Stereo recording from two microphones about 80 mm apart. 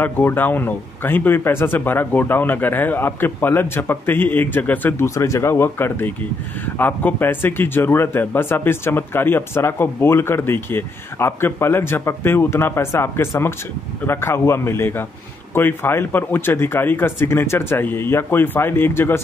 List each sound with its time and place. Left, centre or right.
0.0 s a man's voice: left
5.0 s a man's voice: left